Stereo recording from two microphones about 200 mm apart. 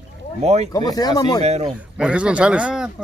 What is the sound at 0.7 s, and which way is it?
Speech, 20° left (ahead or behind).